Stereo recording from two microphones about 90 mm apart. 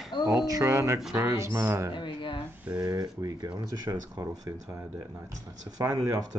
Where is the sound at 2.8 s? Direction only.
45° right (ahead or behind).